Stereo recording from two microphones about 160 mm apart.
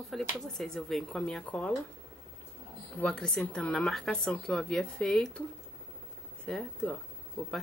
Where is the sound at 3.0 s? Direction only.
5° left (ahead or behind).